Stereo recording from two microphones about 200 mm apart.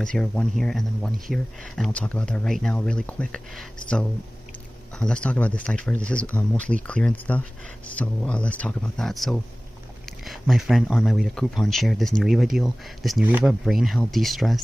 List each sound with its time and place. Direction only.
0.0 s speech: 5° left (ahead or behind)